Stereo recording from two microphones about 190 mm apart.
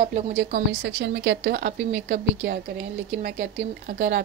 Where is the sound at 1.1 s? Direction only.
60° right (ahead or behind).